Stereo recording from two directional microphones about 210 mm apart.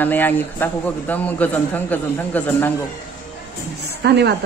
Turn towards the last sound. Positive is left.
turn(degrees=-50)  # may be behind; listen again after turning